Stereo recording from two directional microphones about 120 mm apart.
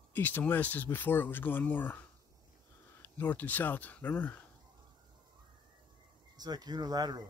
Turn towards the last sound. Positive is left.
turn(degrees=-35)  # may be behind; listen again after turning